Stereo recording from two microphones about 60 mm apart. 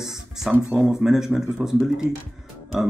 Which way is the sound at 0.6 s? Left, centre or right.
Right.